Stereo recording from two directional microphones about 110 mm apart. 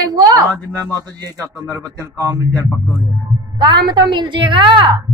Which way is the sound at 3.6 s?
45° right (ahead or behind).